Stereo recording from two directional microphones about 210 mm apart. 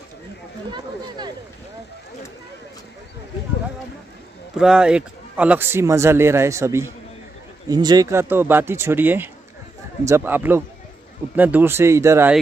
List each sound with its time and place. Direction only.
0.7 s speech: 20° right (ahead or behind)
4.6 s speech: 5° right (ahead or behind)